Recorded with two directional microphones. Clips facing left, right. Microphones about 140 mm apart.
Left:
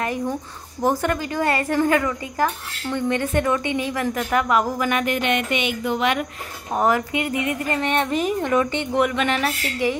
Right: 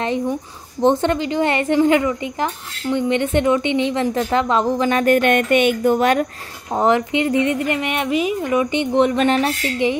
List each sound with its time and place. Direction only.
0.8 s speech: 25° right (ahead or behind)
5.0 s speech: 50° right (ahead or behind)
6.7 s speech: 20° right (ahead or behind)
7.8 s a woman's voice: 10° right (ahead or behind)
8.1 s a woman's voice: 45° left (ahead or behind)
8.4 s a woman's voice: 10° right (ahead or behind)
9.0 s speech: 35° right (ahead or behind)
9.8 s speech: 20° right (ahead or behind)